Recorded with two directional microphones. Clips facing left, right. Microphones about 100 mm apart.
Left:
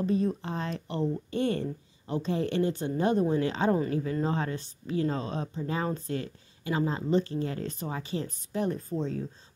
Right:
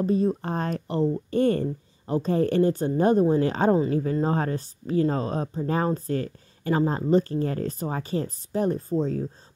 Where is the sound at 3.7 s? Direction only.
25° right (ahead or behind).